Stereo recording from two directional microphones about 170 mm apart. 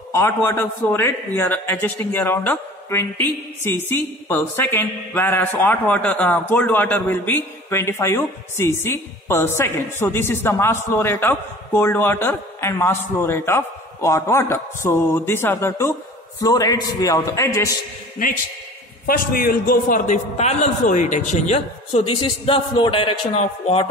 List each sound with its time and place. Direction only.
0.1 s a man's voice: 15° left (ahead or behind)
19.0 s a man's voice: 60° left (ahead or behind); by 23.9 s 35° left (ahead or behind)